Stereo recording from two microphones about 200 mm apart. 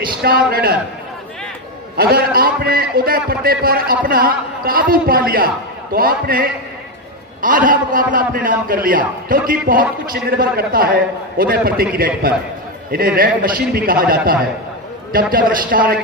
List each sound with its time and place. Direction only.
0.2 s a man's voice: 50° right (ahead or behind)
2.0 s a man's voice: 50° right (ahead or behind)
7.4 s a man's voice: 40° right (ahead or behind)
12.9 s a man's voice: 45° right (ahead or behind)